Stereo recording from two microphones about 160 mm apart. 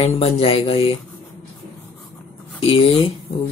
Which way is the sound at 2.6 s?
35° left (ahead or behind).